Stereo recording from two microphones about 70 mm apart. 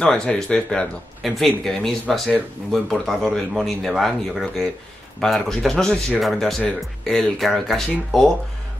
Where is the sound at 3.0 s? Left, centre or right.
Centre.